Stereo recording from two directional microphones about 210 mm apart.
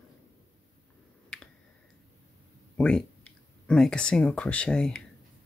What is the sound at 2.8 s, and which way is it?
Speech, 5° left (ahead or behind).